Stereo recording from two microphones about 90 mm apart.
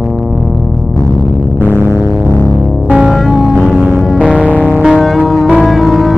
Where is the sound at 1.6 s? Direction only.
25° right (ahead or behind).